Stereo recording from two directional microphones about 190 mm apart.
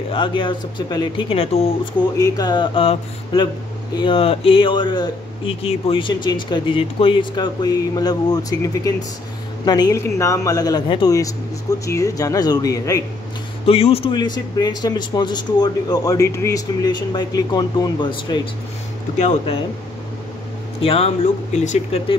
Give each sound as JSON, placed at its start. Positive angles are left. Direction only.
{"t": 0.1, "sound": "speech", "side_deg": 25}
{"t": 13.7, "sound": "speech", "side_deg": 30}
{"t": 19.1, "sound": "speech", "side_deg": 35}
{"t": 20.8, "sound": "speech", "side_deg": 30}